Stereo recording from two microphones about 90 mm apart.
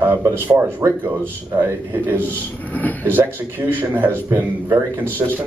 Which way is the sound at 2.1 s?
20° left (ahead or behind).